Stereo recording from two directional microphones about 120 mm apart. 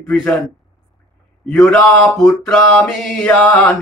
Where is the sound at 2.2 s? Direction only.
15° left (ahead or behind).